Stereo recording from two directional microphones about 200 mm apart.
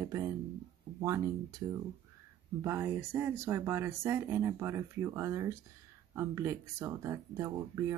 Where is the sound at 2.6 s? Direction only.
10° right (ahead or behind).